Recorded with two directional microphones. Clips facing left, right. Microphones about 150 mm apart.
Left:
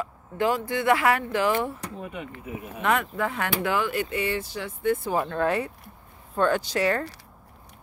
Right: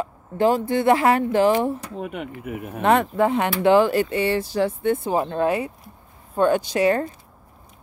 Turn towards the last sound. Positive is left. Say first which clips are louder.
# right 5 dB
turn(degrees=-20)  # may be behind; listen again after turning